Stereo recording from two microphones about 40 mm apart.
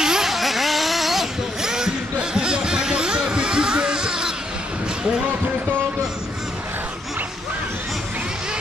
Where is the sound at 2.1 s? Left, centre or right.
Right.